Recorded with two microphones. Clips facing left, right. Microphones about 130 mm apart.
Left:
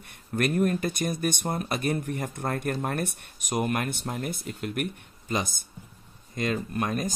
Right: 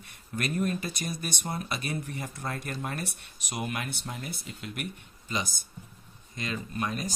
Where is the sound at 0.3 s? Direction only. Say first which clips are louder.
Left 5 dB; 50° left (ahead or behind).